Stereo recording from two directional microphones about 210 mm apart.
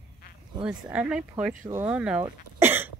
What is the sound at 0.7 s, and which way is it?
Speech, 5° right (ahead or behind).